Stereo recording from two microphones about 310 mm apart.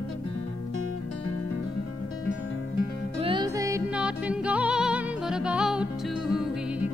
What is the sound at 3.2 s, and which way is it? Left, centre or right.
Music, centre.